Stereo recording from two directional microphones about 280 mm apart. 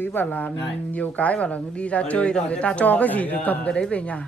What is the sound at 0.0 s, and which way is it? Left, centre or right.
Speech, centre.